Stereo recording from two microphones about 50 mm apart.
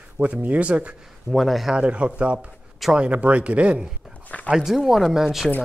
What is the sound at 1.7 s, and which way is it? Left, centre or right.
Speech, right.